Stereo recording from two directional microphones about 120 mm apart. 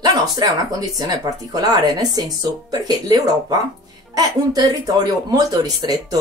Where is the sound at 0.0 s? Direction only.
35° right (ahead or behind).